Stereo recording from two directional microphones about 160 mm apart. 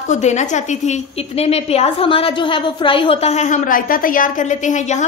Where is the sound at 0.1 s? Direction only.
45° left (ahead or behind).